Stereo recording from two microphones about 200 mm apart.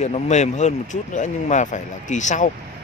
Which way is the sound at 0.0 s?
35° left (ahead or behind).